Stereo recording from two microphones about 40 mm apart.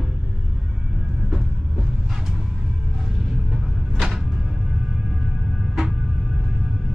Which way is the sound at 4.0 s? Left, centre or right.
Centre.